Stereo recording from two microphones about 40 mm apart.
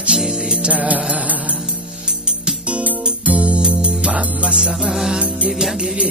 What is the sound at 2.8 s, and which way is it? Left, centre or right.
Music, right.